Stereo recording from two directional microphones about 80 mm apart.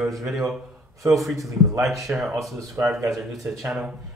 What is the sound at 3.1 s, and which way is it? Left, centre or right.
Speech, centre.